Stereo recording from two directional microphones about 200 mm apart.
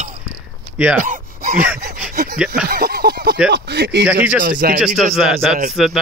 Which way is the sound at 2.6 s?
50° right (ahead or behind).